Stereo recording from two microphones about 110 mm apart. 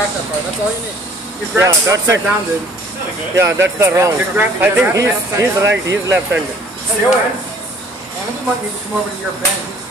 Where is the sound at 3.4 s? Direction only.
25° right (ahead or behind).